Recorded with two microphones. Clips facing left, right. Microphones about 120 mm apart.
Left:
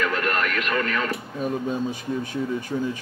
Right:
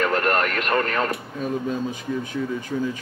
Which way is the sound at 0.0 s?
40° right (ahead or behind).